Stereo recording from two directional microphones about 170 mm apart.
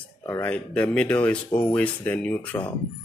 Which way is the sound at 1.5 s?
30° left (ahead or behind).